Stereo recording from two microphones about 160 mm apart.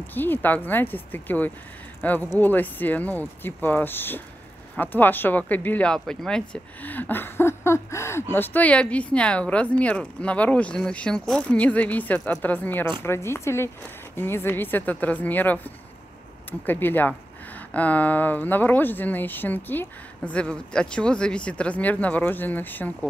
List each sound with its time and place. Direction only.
0.0 s speech: 10° left (ahead or behind)